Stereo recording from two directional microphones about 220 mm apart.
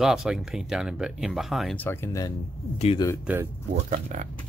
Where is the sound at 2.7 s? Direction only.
25° left (ahead or behind).